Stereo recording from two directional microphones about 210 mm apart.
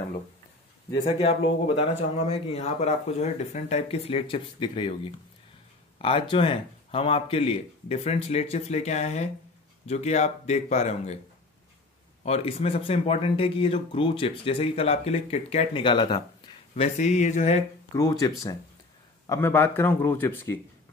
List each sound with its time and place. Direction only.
1.8 s speech: 30° left (ahead or behind)
5.9 s speech: 25° left (ahead or behind)
12.2 s speech: 30° left (ahead or behind)
17.9 s speech: 15° left (ahead or behind)